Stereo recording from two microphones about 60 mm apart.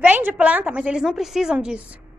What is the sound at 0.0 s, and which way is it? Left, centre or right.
A woman's voice, right.